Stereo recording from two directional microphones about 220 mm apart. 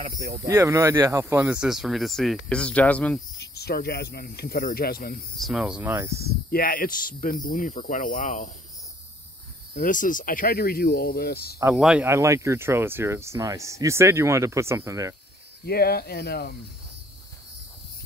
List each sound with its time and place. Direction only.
0.2 s speech: 50° right (ahead or behind)
0.5 s speech: 10° right (ahead or behind); by 3.2 s 5° left (ahead or behind)
3.3 s speech: 45° left (ahead or behind)
5.4 s speech: centre (ahead or behind)
6.5 s speech: 40° left (ahead or behind)
9.8 s speech: 35° left (ahead or behind)
11.6 s speech: 5° right (ahead or behind)
15.6 s speech: 45° left (ahead or behind)